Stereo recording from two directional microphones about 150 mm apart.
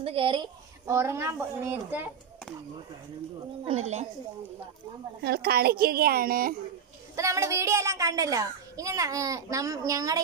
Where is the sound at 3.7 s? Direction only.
50° right (ahead or behind).